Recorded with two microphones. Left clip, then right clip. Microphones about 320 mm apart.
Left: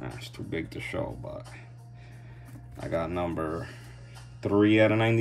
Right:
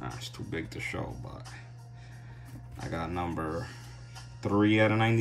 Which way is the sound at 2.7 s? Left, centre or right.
Centre.